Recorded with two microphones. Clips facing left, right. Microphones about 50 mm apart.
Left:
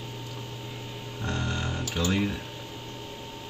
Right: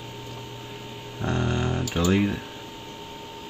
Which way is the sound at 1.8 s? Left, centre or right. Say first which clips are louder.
Right 4 dB; right.